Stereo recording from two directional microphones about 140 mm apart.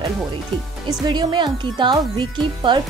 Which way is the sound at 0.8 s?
30° right (ahead or behind).